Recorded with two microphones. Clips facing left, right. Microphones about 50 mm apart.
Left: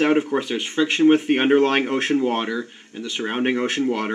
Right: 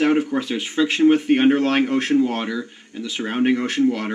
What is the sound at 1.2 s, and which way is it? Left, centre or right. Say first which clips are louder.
Speech: even; centre.